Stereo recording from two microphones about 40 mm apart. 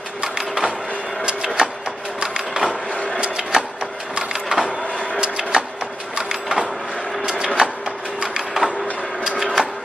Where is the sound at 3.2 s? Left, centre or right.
Centre.